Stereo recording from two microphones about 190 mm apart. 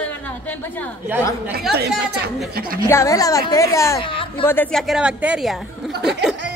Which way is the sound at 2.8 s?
15° left (ahead or behind).